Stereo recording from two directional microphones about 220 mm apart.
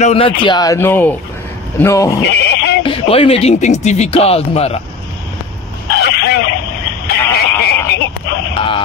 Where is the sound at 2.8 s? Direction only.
25° left (ahead or behind).